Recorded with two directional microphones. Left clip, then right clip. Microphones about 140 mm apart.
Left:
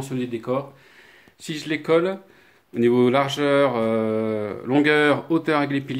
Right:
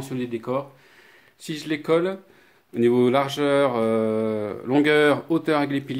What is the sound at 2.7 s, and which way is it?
Mantra, 25° right (ahead or behind).